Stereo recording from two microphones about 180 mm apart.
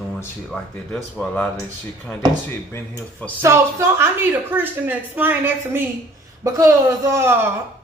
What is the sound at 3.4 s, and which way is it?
A woman's voice, 15° right (ahead or behind).